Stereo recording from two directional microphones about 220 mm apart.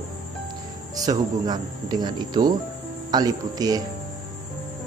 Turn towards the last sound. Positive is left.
turn(degrees=-15)  # may be behind; listen again after turning